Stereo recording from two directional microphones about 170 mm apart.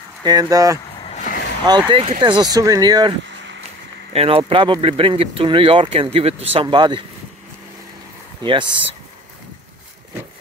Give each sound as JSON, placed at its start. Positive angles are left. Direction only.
{"t": 0.2, "sound": "speech", "side_deg": -25}
{"t": 1.1, "sound": "vehicle", "side_deg": 45}
{"t": 1.7, "sound": "speech", "side_deg": -25}
{"t": 4.1, "sound": "speech", "side_deg": -35}
{"t": 8.4, "sound": "speech", "side_deg": -30}